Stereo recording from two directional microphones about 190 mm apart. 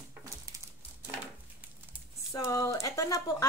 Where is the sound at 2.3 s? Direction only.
20° left (ahead or behind).